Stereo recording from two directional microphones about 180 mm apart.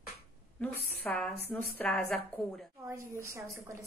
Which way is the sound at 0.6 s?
5° left (ahead or behind).